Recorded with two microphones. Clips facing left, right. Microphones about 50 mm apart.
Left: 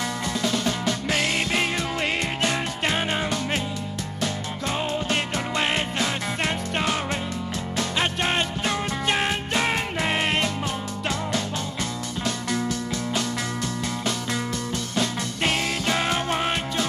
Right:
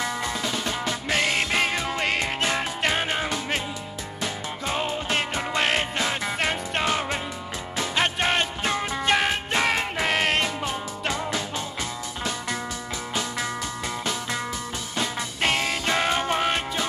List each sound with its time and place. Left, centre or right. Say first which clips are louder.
0.0 s music: left 1 dB; centre
12.3 s music: left 3 dB; centre
15.0 s music: left 1 dB; centre